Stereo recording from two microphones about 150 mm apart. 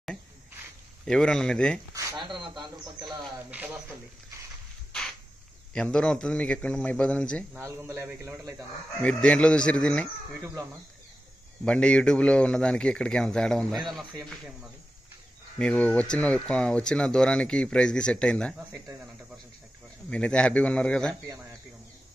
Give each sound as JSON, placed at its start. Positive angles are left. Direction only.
{"t": 1.0, "sound": "speech", "side_deg": 5}
{"t": 2.1, "sound": "speech", "side_deg": -30}
{"t": 3.4, "sound": "speech", "side_deg": -10}
{"t": 5.7, "sound": "a man's voice", "side_deg": 5}
{"t": 7.5, "sound": "speech", "side_deg": -15}
{"t": 9.0, "sound": "a man's voice", "side_deg": 5}
{"t": 10.4, "sound": "speech", "side_deg": -20}
{"t": 11.6, "sound": "a man's voice", "side_deg": 5}
{"t": 20.1, "sound": "a man's voice", "side_deg": 5}